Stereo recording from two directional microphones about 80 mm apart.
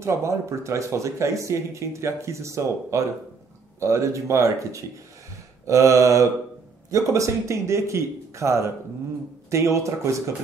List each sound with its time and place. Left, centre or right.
0.0 s speech: right